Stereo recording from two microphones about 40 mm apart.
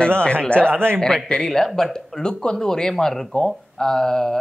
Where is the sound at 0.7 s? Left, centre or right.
Right.